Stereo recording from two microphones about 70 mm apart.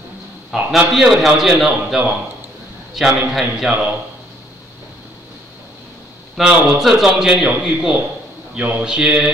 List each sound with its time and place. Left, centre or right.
0.7 s a man's voice: centre
6.3 s a man's voice: centre
8.5 s a man's voice: right
8.8 s mantra: centre